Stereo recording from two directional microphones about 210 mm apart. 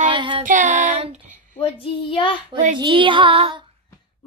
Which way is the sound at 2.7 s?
25° right (ahead or behind).